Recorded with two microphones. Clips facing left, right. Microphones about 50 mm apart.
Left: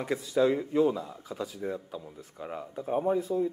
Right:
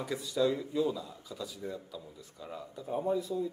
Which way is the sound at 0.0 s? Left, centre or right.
Left.